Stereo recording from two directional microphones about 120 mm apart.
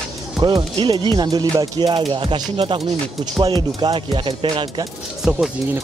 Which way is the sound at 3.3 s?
35° right (ahead or behind).